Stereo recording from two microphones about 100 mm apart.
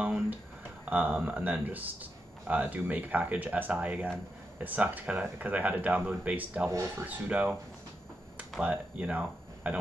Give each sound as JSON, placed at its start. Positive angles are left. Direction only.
{"t": 0.0, "sound": "a sound", "side_deg": -15}
{"t": 0.8, "sound": "speech", "side_deg": -15}
{"t": 6.7, "sound": "speech", "side_deg": -25}
{"t": 7.1, "sound": "speech", "side_deg": -15}